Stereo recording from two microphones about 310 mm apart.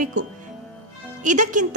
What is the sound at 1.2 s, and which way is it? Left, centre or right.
Speech, right.